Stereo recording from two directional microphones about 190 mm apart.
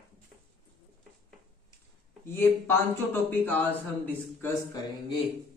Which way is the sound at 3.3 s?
10° left (ahead or behind).